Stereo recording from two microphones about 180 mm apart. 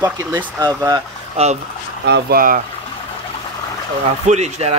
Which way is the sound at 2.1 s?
55° right (ahead or behind).